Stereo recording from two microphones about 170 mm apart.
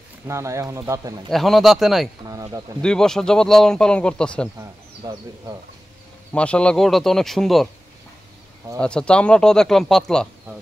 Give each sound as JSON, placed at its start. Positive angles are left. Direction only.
{"t": 0.3, "sound": "speech", "side_deg": -15}
{"t": 1.3, "sound": "speech", "side_deg": 0}
{"t": 2.2, "sound": "speech", "side_deg": -20}
{"t": 2.8, "sound": "speech", "side_deg": 5}
{"t": 6.3, "sound": "speech", "side_deg": 5}
{"t": 8.7, "sound": "speech", "side_deg": 5}